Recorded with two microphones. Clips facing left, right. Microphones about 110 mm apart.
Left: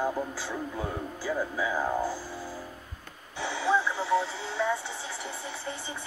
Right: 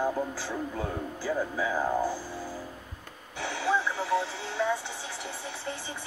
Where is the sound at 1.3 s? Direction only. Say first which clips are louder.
Even; 15° left (ahead or behind).